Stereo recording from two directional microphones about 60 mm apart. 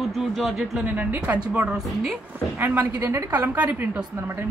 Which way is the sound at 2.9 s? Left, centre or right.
Right.